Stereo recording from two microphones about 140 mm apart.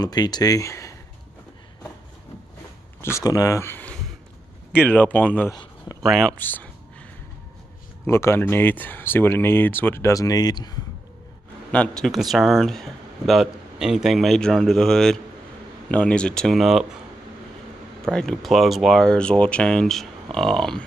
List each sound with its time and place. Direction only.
0.0 s speech: 30° left (ahead or behind)
3.0 s speech: 20° left (ahead or behind)
5.5 s a sound: 25° left (ahead or behind)
6.0 s speech: centre (ahead or behind)
6.3 s speech: 10° left (ahead or behind)
8.1 s speech: 20° left (ahead or behind)
11.7 s speech: 5° left (ahead or behind)
18.1 s speech: centre (ahead or behind)